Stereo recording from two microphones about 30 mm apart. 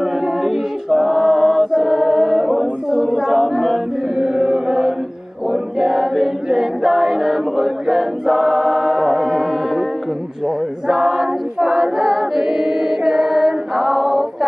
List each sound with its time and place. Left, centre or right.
0.0 s a capella: centre
1.7 s chant: centre
3.0 s a sound: centre
3.3 s singing: centre
4.2 s chant: right
5.5 s choir: centre
10.9 s choir: centre